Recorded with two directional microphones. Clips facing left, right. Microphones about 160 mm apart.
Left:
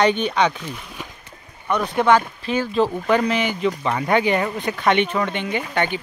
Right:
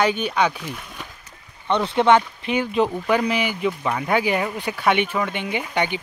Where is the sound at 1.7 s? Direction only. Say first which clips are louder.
Right 1 dB; 25° right (ahead or behind).